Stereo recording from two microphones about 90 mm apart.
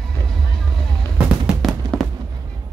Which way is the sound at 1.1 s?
15° right (ahead or behind).